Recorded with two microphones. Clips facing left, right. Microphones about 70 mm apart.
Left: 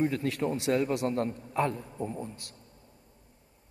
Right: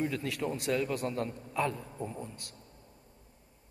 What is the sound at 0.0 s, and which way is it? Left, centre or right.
A man's voice, left.